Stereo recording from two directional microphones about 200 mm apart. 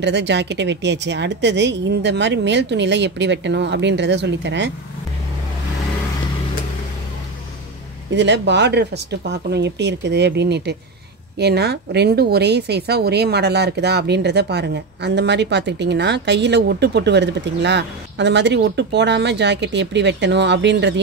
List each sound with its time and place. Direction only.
0.0 s a woman's voice: 60° right (ahead or behind)
8.1 s a woman's voice: 60° right (ahead or behind)